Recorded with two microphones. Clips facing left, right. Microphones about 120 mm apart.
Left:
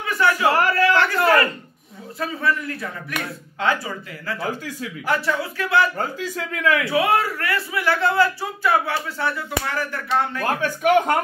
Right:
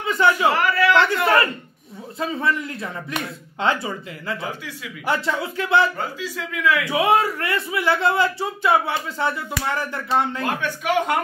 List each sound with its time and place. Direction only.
0.0 s a sound: 20° right (ahead or behind)
0.5 s a sound: 40° left (ahead or behind)
2.1 s a man's voice: 25° right (ahead or behind)
5.9 s a man's voice: 45° left (ahead or behind)
6.8 s a man's voice: 20° right (ahead or behind)
10.6 s a man's voice: 45° left (ahead or behind)